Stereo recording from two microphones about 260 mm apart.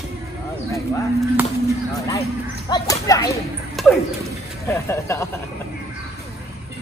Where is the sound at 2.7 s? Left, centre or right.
Centre.